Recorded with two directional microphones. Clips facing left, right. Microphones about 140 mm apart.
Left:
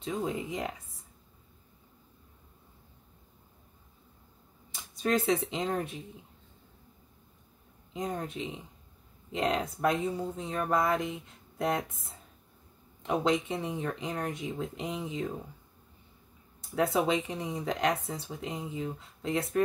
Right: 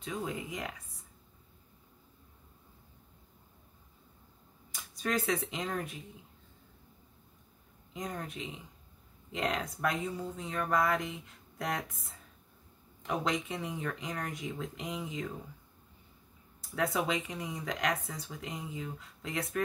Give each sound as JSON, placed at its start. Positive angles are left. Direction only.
{"t": 0.0, "sound": "speech", "side_deg": 25}
{"t": 4.7, "sound": "speech", "side_deg": 25}
{"t": 7.9, "sound": "speech", "side_deg": 25}
{"t": 16.7, "sound": "speech", "side_deg": 25}